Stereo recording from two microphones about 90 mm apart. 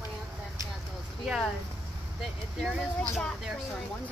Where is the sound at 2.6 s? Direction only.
5° left (ahead or behind).